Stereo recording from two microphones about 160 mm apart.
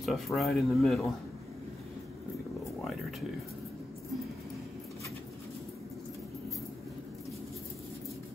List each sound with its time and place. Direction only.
0.0 s speech: centre (ahead or behind)